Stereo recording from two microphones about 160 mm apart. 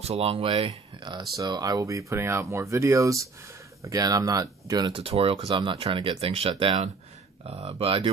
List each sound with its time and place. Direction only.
0.0 s speech: 40° right (ahead or behind); by 4.9 s 25° right (ahead or behind)
4.9 s speech: 35° right (ahead or behind)
7.4 s speech: 40° right (ahead or behind)